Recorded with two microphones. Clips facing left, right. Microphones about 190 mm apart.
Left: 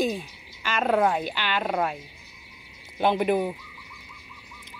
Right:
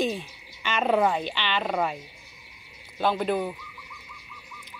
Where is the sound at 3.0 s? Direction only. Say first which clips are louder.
Left 3 dB; 15° left (ahead or behind).